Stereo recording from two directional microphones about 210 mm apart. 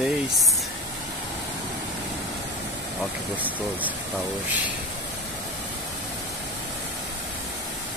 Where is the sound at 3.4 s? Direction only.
5° right (ahead or behind).